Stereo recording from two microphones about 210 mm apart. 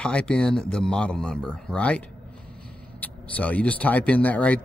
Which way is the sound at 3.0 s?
5° left (ahead or behind).